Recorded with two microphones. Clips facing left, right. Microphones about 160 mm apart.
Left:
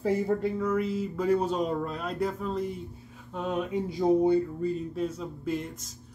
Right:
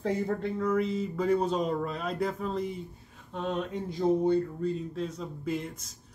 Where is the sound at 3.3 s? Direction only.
10° left (ahead or behind).